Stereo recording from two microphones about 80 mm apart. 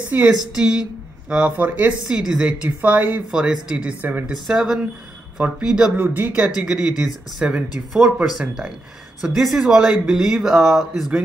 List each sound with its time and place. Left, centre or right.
0.1 s speech: right
0.6 s speech: centre
2.0 s speech: centre
4.5 s speech: centre
6.0 s speech: right; by 10.5 s centre
10.5 s speech: right